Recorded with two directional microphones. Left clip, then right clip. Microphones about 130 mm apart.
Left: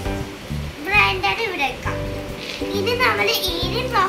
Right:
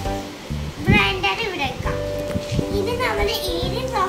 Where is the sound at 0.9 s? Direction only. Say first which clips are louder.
Left 2 dB; centre (ahead or behind).